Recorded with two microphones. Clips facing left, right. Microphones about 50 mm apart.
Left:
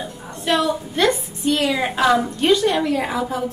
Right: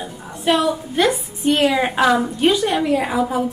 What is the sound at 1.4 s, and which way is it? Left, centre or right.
Speech, right.